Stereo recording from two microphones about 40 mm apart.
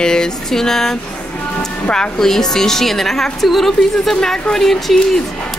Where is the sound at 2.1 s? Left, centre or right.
Centre.